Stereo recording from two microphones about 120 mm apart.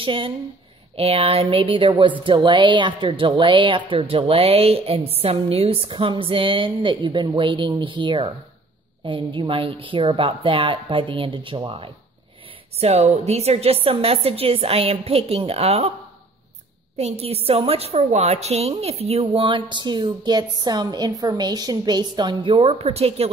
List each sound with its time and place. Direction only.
0.0 s speech: 45° right (ahead or behind)
12.7 s a woman's voice: 60° right (ahead or behind)
16.9 s speech: 60° right (ahead or behind); by 22.7 s 45° right (ahead or behind)
22.7 s a woman's voice: 60° right (ahead or behind)